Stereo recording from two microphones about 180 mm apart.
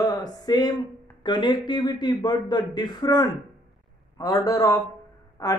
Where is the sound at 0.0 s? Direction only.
20° left (ahead or behind).